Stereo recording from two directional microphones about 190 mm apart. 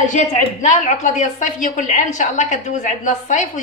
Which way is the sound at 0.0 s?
40° left (ahead or behind).